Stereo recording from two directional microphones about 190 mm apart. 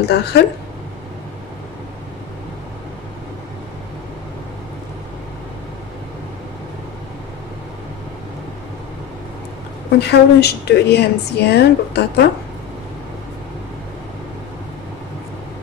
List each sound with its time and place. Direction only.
0.1 s a woman's voice: 60° left (ahead or behind)
9.9 s a woman's voice: 60° left (ahead or behind)